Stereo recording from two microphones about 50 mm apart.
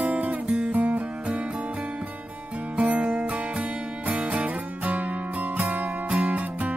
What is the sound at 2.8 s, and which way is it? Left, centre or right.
Music, right.